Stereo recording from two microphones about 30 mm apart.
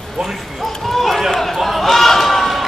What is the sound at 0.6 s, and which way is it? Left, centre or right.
Speech, centre.